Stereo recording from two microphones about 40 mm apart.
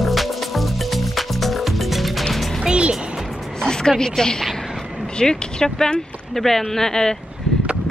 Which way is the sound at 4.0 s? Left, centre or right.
Centre.